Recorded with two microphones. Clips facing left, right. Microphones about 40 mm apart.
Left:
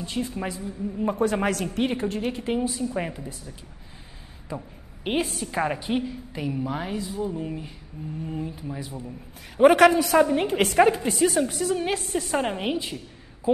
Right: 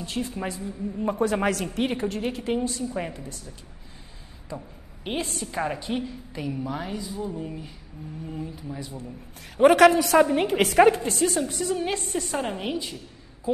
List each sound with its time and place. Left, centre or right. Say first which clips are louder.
0.0 s a woman's voice: left 1 dB; centre
5.1 s a woman's voice: left 3 dB; centre
11.0 s a woman's voice: left 3 dB; centre
12.4 s a woman's voice: left 4 dB; centre